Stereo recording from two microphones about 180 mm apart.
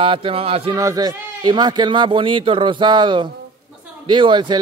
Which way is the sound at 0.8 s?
20° right (ahead or behind).